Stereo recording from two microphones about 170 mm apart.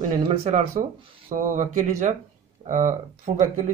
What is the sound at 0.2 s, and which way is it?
Speech, 35° right (ahead or behind).